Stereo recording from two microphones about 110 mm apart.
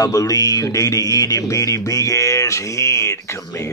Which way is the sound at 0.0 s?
30° left (ahead or behind).